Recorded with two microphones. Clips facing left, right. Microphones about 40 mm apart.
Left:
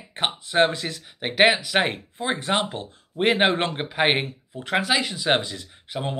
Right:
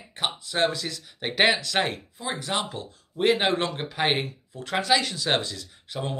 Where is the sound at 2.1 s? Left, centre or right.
Left.